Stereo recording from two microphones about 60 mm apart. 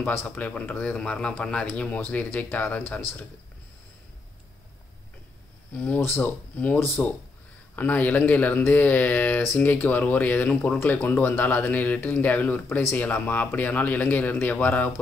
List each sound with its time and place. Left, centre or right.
0.3 s speech: left
5.7 s speech: left
5.9 s speech: left
6.5 s speech: left